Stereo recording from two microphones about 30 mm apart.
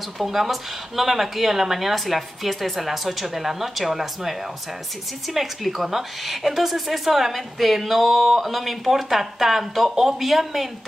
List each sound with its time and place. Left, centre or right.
0.2 s speech: centre